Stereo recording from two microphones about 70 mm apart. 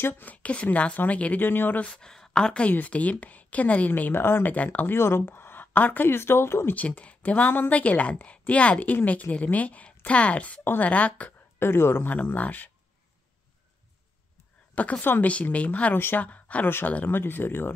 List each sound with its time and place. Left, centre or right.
0.0 s a woman's voice: left
1.9 s a woman's voice: centre; by 6.7 s left
6.7 s a woman's voice: left
10.6 s speech: left
10.9 s a woman's voice: centre
11.6 s a woman's voice: left
14.8 s a woman's voice: left
16.6 s speech: left